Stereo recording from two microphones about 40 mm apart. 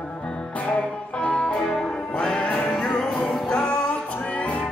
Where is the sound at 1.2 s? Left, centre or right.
Left.